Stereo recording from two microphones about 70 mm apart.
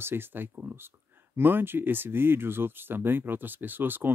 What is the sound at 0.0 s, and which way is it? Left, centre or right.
Speech, right.